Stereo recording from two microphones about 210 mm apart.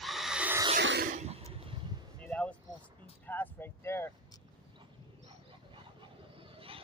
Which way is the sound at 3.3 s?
10° left (ahead or behind).